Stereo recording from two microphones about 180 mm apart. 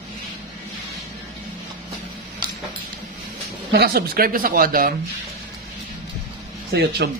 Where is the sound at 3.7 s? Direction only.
60° right (ahead or behind).